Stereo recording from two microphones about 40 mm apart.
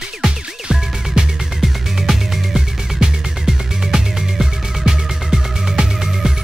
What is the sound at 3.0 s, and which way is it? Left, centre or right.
Music, centre.